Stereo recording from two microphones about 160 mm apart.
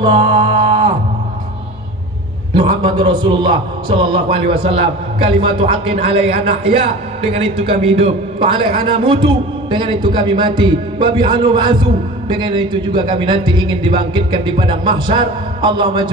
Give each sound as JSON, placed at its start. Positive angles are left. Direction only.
{"t": 0.0, "sound": "music", "side_deg": -35}
{"t": 2.8, "sound": "a man's voice", "side_deg": -30}